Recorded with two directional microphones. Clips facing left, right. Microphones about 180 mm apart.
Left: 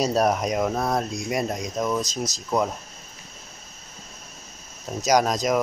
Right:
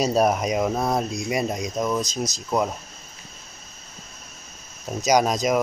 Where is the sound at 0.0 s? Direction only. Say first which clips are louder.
Right 1 dB; centre (ahead or behind).